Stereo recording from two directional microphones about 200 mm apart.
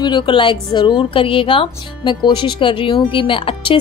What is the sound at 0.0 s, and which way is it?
A woman's voice, 20° left (ahead or behind).